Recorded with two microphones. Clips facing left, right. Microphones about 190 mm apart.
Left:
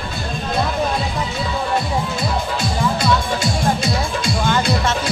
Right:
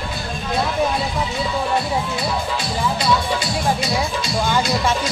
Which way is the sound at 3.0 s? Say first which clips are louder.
Left 1 dB; 50° left (ahead or behind).